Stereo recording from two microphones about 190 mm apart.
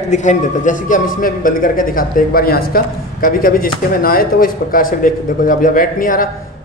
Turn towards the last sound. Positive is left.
turn(degrees=45)  # may be behind; listen again after turning